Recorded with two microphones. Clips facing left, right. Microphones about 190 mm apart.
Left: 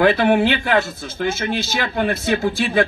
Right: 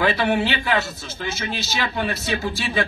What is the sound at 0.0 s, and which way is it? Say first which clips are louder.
Speech: left 6 dB; 55° left (ahead or behind).